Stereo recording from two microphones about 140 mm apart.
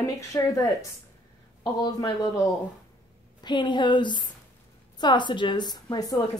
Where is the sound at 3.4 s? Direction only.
35° left (ahead or behind).